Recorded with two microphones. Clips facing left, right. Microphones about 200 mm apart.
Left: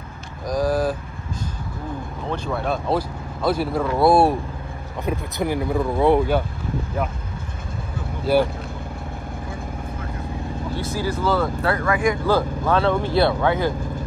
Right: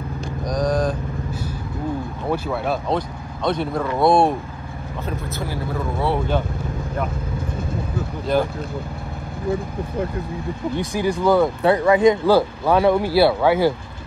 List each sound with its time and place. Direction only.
0.5 s vehicle: 5° left (ahead or behind)
2.3 s speech: 5° right (ahead or behind)
5.0 s speech: 20° left (ahead or behind)
8.3 s speech: 10° left (ahead or behind)
10.9 s speech: 15° right (ahead or behind)